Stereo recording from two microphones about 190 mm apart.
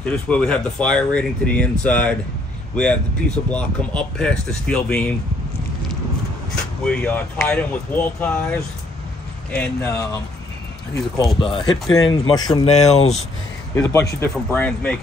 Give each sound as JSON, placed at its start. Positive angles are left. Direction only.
{"t": 0.3, "sound": "speech", "side_deg": 5}
{"t": 6.9, "sound": "speech", "side_deg": 5}
{"t": 11.3, "sound": "speech", "side_deg": 25}
{"t": 12.6, "sound": "speech", "side_deg": 35}
{"t": 13.7, "sound": "speech", "side_deg": 15}